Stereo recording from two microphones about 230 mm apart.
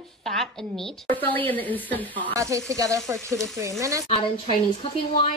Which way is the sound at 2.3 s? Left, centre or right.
Centre.